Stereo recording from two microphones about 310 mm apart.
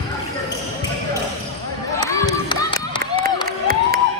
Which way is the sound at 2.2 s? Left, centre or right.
Centre.